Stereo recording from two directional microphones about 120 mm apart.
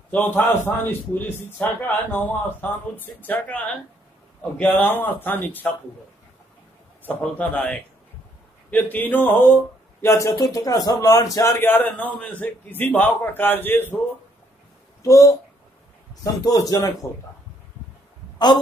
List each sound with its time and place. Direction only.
0.1 s a man's voice: 15° left (ahead or behind)
7.1 s a man's voice: 10° left (ahead or behind)
10.0 s a man's voice: 25° left (ahead or behind)
11.6 s a man's voice: 15° left (ahead or behind)
15.0 s a man's voice: 30° left (ahead or behind)
16.4 s speech: 30° left (ahead or behind)